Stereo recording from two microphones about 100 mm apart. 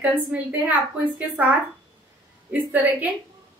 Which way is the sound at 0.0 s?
15° right (ahead or behind).